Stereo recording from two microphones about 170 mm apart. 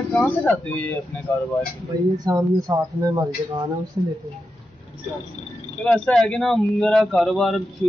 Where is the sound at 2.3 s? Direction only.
20° right (ahead or behind).